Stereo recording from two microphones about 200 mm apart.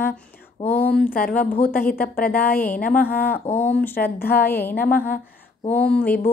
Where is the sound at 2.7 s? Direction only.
45° left (ahead or behind).